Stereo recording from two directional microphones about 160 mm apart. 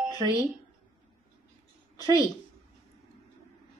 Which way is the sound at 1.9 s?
25° left (ahead or behind).